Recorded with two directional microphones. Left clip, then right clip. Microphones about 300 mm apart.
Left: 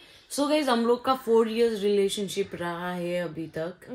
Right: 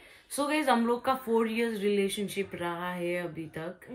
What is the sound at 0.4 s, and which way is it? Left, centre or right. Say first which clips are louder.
Music: left 3 dB; centre.